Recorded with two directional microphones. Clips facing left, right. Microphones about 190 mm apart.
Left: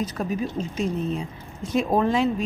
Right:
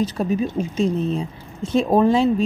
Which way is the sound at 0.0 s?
25° right (ahead or behind).